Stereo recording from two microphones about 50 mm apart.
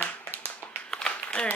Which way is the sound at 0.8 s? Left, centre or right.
Centre.